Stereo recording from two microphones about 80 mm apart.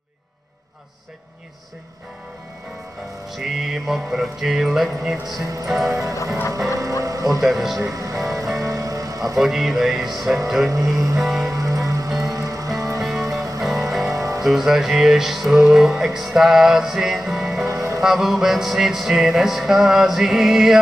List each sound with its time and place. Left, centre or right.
3.3 s music: centre
5.9 s speech: right
7.4 s music: centre
7.9 s music: right
9.4 s music: centre
10.7 s speech: right
11.1 s music: centre
11.5 s music: right
13.7 s music: centre
14.1 s music: right
14.4 s music: centre